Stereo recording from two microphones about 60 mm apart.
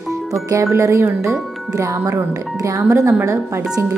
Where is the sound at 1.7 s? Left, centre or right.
Right.